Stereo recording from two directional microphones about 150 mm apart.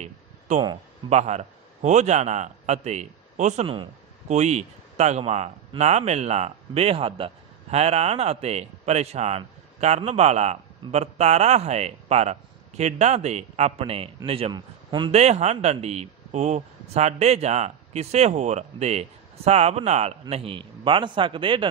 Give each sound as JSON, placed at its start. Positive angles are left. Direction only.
{"t": 0.5, "sound": "a man's voice", "side_deg": -50}
{"t": 15.0, "sound": "speech", "side_deg": -45}